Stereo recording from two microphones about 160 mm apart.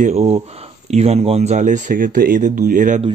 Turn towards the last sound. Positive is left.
turn(degrees=-55)  # may be behind; listen again after turning